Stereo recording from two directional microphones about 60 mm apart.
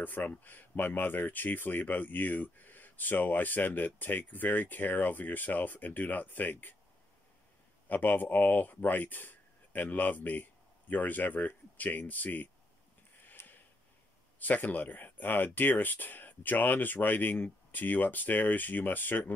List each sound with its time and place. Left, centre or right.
0.0 s speech: left
7.9 s speech: left
13.4 s a sound: left
14.4 s speech: left